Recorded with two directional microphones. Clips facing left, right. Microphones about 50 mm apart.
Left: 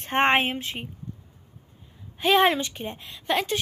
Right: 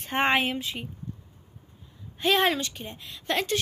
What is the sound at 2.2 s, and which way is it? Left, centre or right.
Speech, centre.